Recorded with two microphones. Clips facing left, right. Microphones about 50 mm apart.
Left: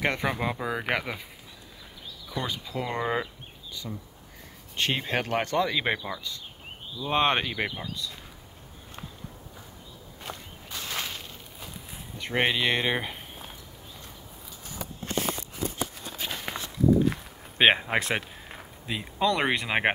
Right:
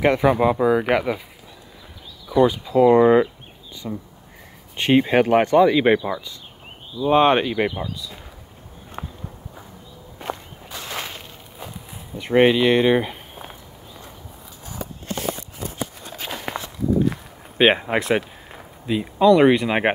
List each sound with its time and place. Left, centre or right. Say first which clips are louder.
0.0 s speech: right 11 dB; centre
2.2 s speech: right 16 dB; centre
9.0 s a sound: right 9 dB; right
10.7 s walk: right 3 dB; centre
12.2 s speech: right 10 dB; centre
16.1 s walk: right 5 dB; right
17.1 s speech: right 2 dB; centre